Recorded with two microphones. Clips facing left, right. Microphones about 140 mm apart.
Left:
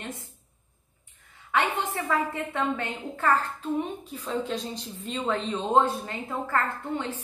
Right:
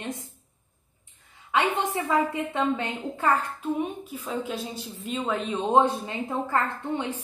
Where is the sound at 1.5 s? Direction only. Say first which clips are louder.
Right 2 dB; 15° right (ahead or behind).